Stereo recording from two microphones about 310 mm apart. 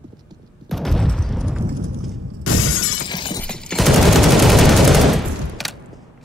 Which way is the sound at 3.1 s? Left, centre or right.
Centre.